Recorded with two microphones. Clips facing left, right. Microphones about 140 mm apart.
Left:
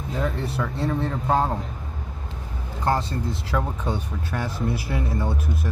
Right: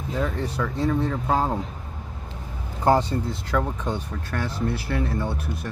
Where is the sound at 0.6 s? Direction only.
5° left (ahead or behind).